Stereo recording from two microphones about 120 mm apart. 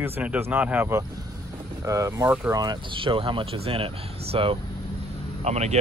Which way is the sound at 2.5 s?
35° right (ahead or behind).